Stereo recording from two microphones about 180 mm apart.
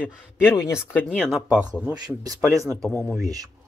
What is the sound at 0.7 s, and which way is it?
Speech, 10° left (ahead or behind).